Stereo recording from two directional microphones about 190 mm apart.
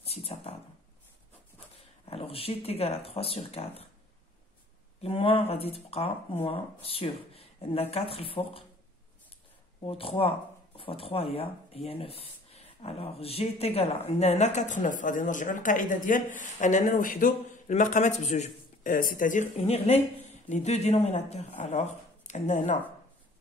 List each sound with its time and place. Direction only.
0.0 s speech: 35° left (ahead or behind)
2.0 s speech: 30° left (ahead or behind)
5.0 s speech: 30° left (ahead or behind)
9.8 s speech: 30° left (ahead or behind)